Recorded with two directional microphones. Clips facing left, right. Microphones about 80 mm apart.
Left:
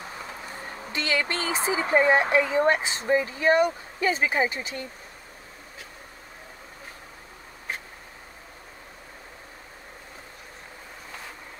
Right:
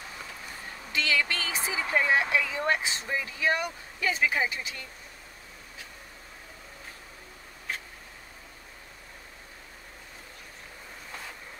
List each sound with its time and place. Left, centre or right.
0.9 s speech: left